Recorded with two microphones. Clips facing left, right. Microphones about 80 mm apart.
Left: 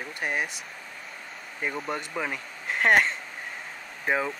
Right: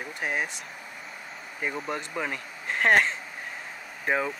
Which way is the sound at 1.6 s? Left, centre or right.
Centre.